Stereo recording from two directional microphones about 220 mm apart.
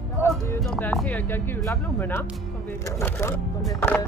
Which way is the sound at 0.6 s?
5° left (ahead or behind).